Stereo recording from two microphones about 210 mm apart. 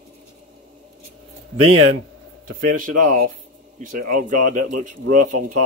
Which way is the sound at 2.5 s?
40° right (ahead or behind).